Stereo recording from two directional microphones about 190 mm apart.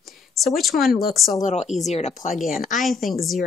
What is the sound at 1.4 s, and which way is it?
Speech, 35° left (ahead or behind).